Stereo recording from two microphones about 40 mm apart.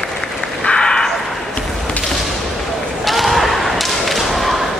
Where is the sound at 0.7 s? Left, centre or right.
Centre.